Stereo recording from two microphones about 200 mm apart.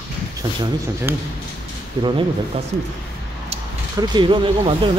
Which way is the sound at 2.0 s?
25° right (ahead or behind).